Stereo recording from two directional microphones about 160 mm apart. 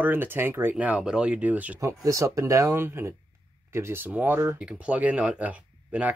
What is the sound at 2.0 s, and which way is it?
Speech, 20° right (ahead or behind).